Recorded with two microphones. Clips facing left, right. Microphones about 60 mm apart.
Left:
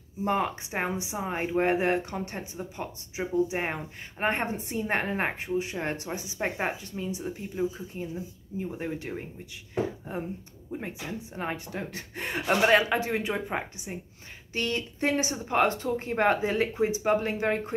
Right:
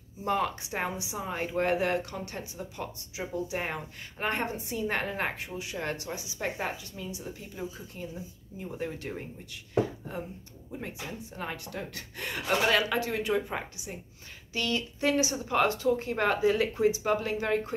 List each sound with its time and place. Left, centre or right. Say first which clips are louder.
0.2 s speech: left 2 dB; left
10.7 s speech: left 3 dB; left